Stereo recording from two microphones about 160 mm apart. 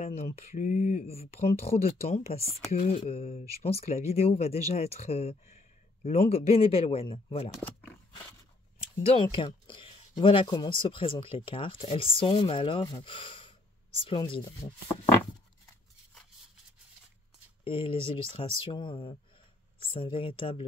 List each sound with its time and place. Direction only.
0.0 s speech: 45° left (ahead or behind)
7.6 s speech: 10° left (ahead or behind)
9.0 s speech: 35° left (ahead or behind)
17.6 s speech: 35° left (ahead or behind)